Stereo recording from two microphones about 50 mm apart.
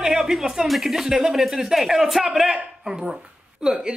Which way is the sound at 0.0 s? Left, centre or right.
Centre.